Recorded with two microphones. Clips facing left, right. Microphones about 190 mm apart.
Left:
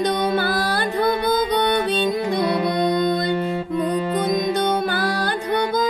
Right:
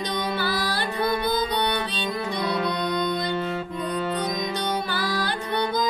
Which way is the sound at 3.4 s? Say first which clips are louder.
Left 6 dB; 10° left (ahead or behind).